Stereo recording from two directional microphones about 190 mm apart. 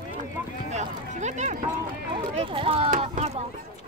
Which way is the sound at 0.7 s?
35° right (ahead or behind).